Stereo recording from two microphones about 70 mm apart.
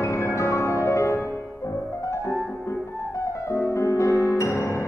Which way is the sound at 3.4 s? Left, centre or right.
Left.